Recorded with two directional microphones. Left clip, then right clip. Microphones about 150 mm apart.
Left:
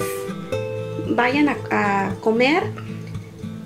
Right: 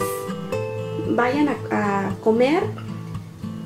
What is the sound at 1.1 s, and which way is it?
Speech, 30° left (ahead or behind).